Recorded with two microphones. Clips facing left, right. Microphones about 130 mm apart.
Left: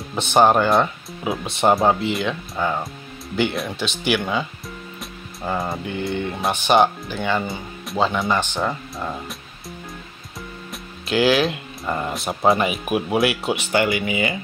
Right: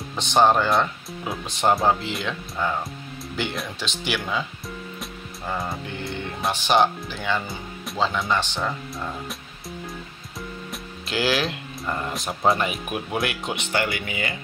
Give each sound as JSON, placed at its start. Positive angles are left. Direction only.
{"t": 0.1, "sound": "speech", "side_deg": 10}
{"t": 3.3, "sound": "speech", "side_deg": 5}
{"t": 5.9, "sound": "speech", "side_deg": 0}
{"t": 8.5, "sound": "speech", "side_deg": 15}
{"t": 11.1, "sound": "speech", "side_deg": 0}
{"t": 11.8, "sound": "speech", "side_deg": 15}
{"t": 12.1, "sound": "speech", "side_deg": 5}